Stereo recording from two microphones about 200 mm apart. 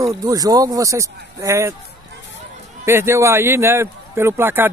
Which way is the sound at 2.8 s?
10° right (ahead or behind).